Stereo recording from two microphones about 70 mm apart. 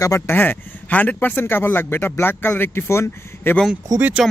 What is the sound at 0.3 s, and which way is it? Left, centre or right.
A man's voice, left.